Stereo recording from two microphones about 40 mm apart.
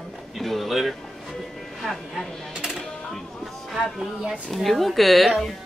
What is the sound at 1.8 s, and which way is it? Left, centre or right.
Speech, centre.